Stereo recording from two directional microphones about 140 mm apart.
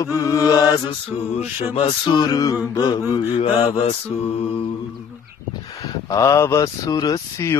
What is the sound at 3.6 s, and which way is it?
Speech, 45° left (ahead or behind).